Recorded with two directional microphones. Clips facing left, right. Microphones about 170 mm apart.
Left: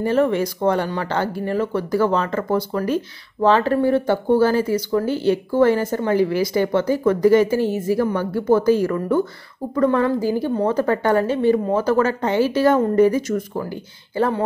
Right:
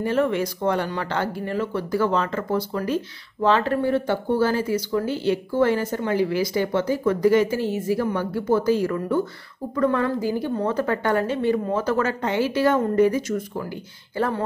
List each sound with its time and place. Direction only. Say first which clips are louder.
0.0 s speech: left 4 dB; 40° left (ahead or behind)
9.8 s a woman's voice: left 4 dB; 35° left (ahead or behind)
14.1 s speech: left 4 dB; 25° left (ahead or behind)